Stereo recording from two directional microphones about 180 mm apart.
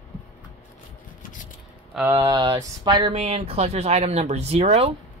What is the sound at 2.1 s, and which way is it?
Speech, 20° right (ahead or behind).